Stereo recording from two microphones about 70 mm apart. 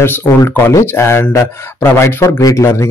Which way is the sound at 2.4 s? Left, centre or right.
Left.